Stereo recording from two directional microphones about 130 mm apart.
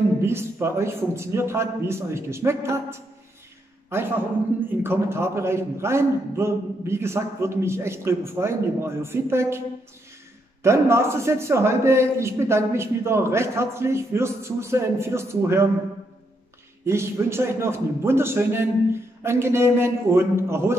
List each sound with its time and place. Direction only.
0.2 s a man's voice: 20° right (ahead or behind)
10.6 s a man's voice: 20° right (ahead or behind)
16.8 s a man's voice: 20° right (ahead or behind)